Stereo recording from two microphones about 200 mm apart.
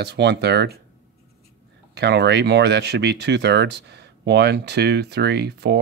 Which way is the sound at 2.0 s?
60° right (ahead or behind).